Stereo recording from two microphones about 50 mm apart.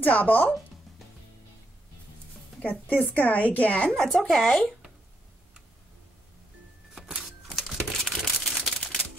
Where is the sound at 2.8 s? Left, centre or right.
Left.